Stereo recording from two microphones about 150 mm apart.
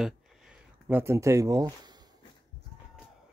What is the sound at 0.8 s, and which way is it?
Speech, 15° right (ahead or behind).